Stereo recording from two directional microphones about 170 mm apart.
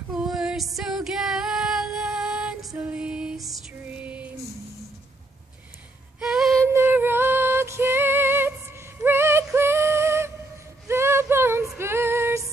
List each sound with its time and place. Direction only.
0.1 s female singing: 5° right (ahead or behind)
2.8 s music: 5° right (ahead or behind)
6.1 s a sound: 5° right (ahead or behind)
6.7 s music: 15° right (ahead or behind)
10.9 s a sound: 15° right (ahead or behind)
11.8 s female singing: 15° right (ahead or behind)